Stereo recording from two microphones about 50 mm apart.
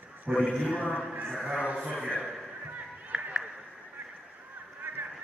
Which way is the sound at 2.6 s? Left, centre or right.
Right.